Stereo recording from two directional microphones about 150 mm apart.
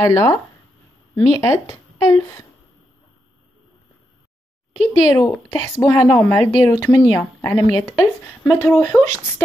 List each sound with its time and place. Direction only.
0.0 s a woman's voice: 20° left (ahead or behind)
5.1 s speech: 20° left (ahead or behind)